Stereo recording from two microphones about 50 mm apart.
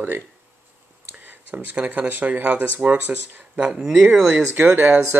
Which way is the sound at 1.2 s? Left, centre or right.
Right.